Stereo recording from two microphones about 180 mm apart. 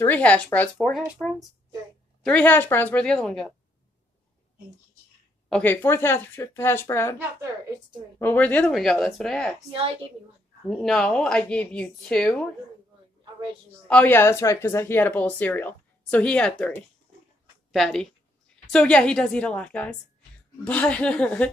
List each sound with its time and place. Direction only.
0.0 s speech: 10° left (ahead or behind)
0.7 s a woman's voice: centre (ahead or behind)
5.5 s speech: 10° left (ahead or behind)
8.2 s a woman's voice: 10° left (ahead or behind)
10.7 s a woman's voice: 5° left (ahead or behind)
13.8 s a woman's voice: 10° left (ahead or behind)